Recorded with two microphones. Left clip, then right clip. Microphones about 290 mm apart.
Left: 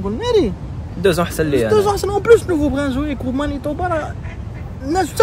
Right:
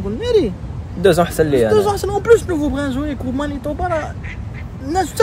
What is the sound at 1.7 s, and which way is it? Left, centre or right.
Speech, centre.